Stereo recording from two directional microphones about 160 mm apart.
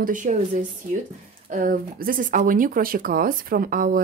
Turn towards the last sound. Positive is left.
turn(degrees=-60)  # may be behind; listen again after turning